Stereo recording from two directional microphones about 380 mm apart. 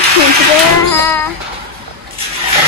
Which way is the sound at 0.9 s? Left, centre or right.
Centre.